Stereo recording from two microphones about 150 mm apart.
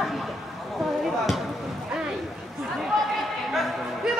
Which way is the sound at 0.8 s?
Centre (ahead or behind).